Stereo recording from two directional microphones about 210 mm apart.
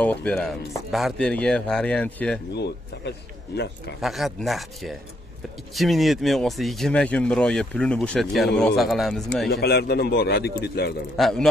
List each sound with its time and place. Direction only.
0.0 s speech: 5° left (ahead or behind)
2.5 s speech: 55° left (ahead or behind)
4.0 s speech: centre (ahead or behind)
9.5 s speech: 50° left (ahead or behind)
11.1 s speech: centre (ahead or behind)